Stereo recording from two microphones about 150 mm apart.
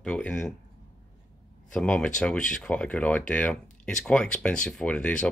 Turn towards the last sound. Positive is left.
turn(degrees=5)  # may be behind; listen again after turning